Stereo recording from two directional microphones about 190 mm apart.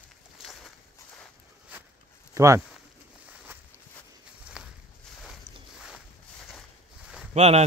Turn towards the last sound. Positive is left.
turn(degrees=-35)  # may be behind; listen again after turning